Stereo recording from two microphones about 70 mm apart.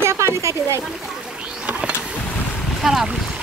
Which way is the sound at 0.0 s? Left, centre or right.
Right.